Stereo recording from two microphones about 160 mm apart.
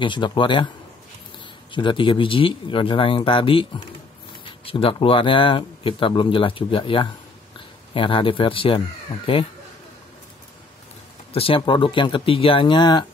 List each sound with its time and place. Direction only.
0.0 s speech: 30° left (ahead or behind)
1.7 s speech: 30° left (ahead or behind)
11.3 s speech: 35° left (ahead or behind)